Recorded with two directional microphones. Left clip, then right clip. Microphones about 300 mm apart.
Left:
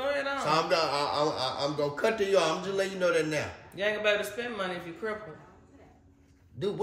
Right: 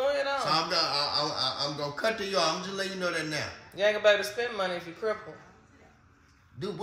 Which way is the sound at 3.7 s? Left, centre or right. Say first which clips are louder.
Right 4 dB; centre.